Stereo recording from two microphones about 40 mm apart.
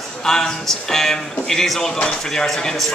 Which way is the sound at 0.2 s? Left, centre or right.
Centre.